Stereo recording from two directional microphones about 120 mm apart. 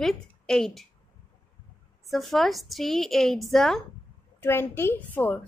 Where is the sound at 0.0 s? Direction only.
5° left (ahead or behind).